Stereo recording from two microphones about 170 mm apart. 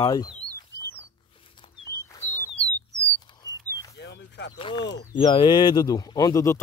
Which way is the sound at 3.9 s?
90° left.